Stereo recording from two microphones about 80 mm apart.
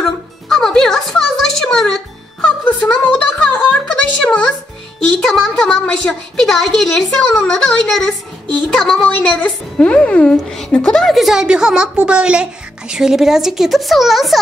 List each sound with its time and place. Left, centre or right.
0.0 s music: centre
2.4 s music: centre
5.2 s a woman's voice: centre